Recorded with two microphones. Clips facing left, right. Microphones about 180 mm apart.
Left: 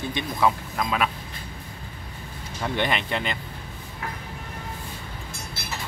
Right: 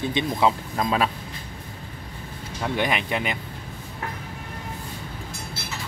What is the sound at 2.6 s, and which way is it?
Speech, 5° right (ahead or behind).